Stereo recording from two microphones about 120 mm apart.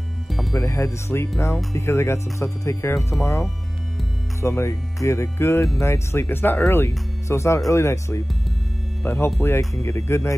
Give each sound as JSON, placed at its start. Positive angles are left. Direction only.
{"t": 0.3, "sound": "music", "side_deg": 0}
{"t": 0.6, "sound": "speech", "side_deg": 25}